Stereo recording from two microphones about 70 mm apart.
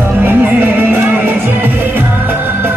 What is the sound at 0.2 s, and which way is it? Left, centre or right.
Music, right.